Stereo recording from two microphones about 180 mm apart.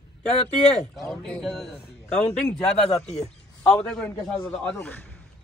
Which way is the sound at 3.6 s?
5° left (ahead or behind).